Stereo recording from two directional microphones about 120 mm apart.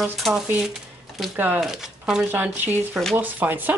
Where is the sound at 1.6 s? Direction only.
5° right (ahead or behind).